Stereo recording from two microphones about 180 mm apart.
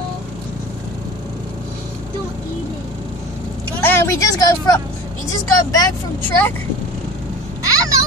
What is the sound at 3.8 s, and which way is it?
Speech, 15° left (ahead or behind).